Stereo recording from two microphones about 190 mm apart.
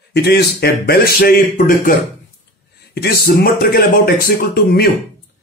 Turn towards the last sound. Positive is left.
turn(degrees=55)  # may be behind; listen again after turning